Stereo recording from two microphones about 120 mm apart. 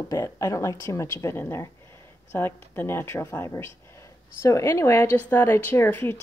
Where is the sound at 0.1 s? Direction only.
25° left (ahead or behind).